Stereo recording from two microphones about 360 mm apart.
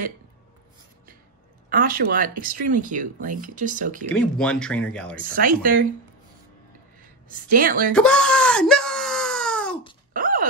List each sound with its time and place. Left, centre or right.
1.7 s speech: right
4.1 s speech: centre
5.1 s speech: right
7.4 s speech: right
7.9 s wail: centre
10.1 s a sound: right